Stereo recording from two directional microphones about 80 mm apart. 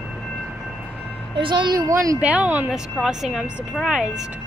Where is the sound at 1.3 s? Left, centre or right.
Right.